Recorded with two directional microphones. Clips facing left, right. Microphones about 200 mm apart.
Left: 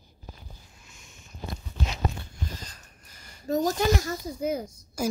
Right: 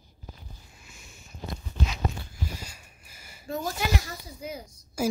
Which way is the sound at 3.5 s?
40° left (ahead or behind).